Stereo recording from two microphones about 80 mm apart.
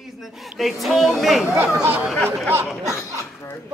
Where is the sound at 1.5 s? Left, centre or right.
Right.